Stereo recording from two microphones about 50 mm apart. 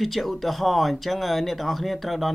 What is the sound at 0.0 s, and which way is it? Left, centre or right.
Speech, centre.